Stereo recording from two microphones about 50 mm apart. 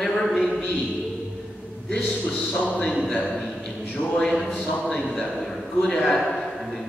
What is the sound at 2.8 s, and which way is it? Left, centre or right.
Speech, centre.